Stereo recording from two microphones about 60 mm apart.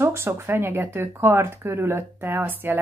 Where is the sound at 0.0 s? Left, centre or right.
Right.